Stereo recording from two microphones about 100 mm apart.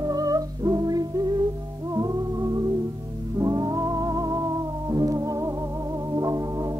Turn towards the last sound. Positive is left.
turn(degrees=-35)  # may be behind; listen again after turning